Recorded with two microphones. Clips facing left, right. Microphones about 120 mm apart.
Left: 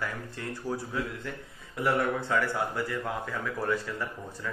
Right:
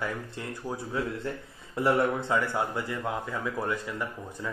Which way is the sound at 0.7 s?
15° right (ahead or behind).